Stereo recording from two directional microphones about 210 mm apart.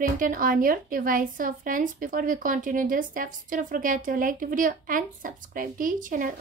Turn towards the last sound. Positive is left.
turn(degrees=-40)  # may be behind; listen again after turning